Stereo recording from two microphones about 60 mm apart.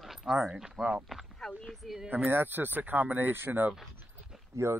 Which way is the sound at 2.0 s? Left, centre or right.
Right.